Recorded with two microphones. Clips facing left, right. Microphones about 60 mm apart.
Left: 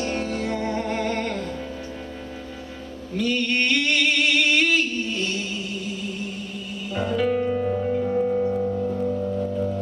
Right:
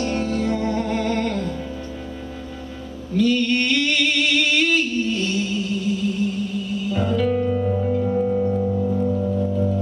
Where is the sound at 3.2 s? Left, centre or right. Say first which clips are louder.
Right 4 dB; centre.